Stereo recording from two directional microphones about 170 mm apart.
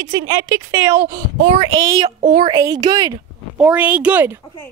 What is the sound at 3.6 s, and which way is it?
Speech, 10° right (ahead or behind).